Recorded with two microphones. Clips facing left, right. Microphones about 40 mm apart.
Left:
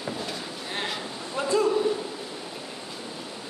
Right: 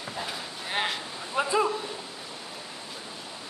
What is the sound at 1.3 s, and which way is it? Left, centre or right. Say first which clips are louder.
Speech: left 1 dB; centre.